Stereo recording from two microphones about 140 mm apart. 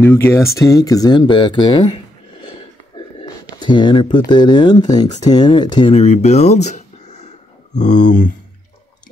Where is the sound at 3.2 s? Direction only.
30° left (ahead or behind).